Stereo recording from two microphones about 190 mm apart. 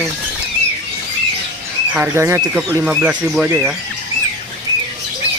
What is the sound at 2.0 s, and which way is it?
Speech, 15° right (ahead or behind).